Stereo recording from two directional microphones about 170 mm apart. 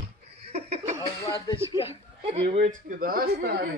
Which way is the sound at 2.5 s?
50° right (ahead or behind).